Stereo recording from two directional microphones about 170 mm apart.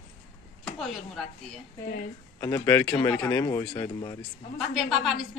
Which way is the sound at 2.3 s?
20° left (ahead or behind).